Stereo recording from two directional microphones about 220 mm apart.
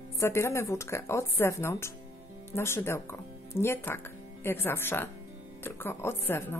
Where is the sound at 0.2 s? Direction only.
10° left (ahead or behind).